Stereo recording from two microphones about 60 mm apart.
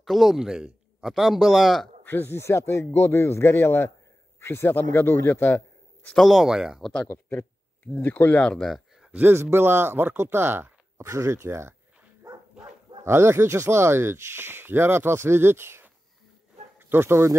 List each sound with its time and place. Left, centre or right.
0.0 s a man's voice: centre
2.0 s a man's voice: left
6.1 s speech: centre
7.2 s a sound: left
8.0 s a man's voice: left
8.4 s speech: centre
8.6 s a sound: centre
9.3 s speech: right
11.0 s speech: right
13.0 s speech: right